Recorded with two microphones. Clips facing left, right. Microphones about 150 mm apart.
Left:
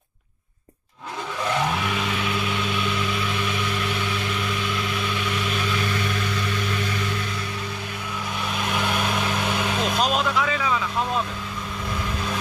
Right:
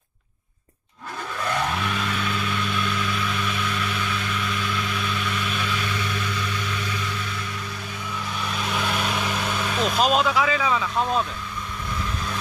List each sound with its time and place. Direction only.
1.8 s vehicle: 15° left (ahead or behind)
8.6 s vehicle: 10° left (ahead or behind)
9.9 s vehicle: centre (ahead or behind)